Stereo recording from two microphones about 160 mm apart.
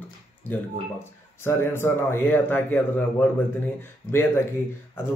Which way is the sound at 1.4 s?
15° left (ahead or behind).